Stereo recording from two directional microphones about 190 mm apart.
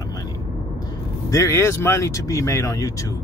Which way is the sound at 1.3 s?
15° left (ahead or behind).